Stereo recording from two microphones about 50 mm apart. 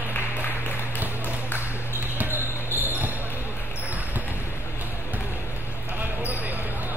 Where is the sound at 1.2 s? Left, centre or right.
Left.